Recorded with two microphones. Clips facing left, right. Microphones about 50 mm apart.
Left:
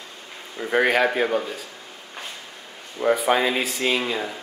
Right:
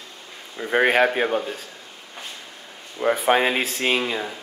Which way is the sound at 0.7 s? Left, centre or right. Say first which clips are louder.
Right 1 dB; right.